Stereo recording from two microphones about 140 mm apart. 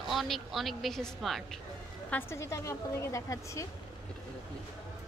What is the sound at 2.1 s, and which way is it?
Speech, 15° left (ahead or behind).